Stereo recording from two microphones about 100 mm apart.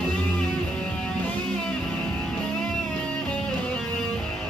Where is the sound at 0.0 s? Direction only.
10° left (ahead or behind).